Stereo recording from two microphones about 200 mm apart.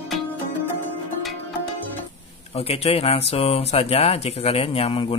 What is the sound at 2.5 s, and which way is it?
Speech, 30° left (ahead or behind).